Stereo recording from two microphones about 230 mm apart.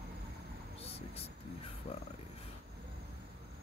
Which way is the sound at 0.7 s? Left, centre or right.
Left.